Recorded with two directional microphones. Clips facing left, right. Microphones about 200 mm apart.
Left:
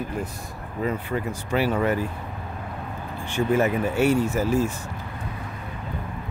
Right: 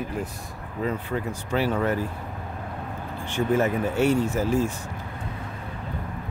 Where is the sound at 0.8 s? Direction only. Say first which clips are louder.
Left 1 dB; 10° left (ahead or behind).